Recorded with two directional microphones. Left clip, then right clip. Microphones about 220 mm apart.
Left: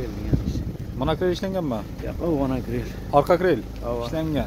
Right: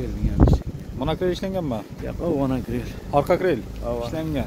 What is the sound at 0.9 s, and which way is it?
Speech, 5° right (ahead or behind).